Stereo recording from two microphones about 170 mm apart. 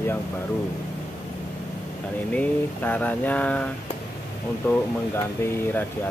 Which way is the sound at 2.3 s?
10° left (ahead or behind).